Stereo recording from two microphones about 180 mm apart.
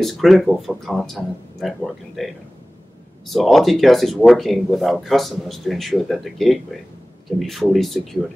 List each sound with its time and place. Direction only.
0.0 s speech: centre (ahead or behind)